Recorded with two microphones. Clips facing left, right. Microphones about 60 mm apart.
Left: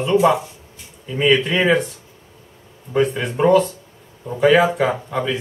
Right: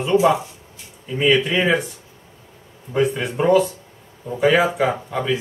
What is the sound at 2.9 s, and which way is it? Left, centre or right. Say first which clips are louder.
Speech: left 1 dB; centre.